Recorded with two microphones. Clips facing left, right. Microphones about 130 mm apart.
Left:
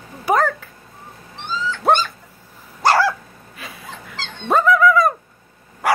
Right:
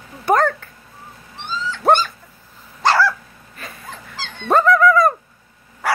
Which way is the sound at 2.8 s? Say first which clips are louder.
Left 1 dB; 10° left (ahead or behind).